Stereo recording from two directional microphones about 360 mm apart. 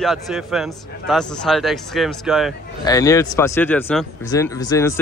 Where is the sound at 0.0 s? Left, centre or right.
Centre.